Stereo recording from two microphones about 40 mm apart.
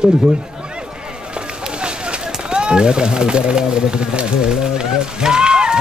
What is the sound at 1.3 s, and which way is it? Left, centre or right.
Speech, right.